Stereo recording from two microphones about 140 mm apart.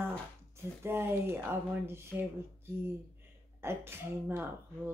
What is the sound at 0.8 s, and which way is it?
Speech, 15° right (ahead or behind).